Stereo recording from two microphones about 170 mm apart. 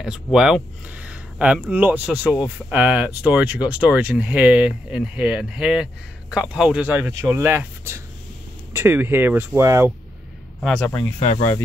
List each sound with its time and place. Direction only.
0.0 s speech: centre (ahead or behind)
10.6 s speech: 5° left (ahead or behind)